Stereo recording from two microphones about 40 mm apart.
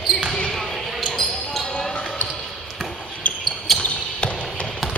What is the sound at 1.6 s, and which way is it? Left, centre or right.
Basketball bounce, centre.